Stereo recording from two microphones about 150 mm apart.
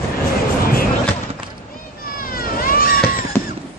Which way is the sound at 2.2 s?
75° left (ahead or behind).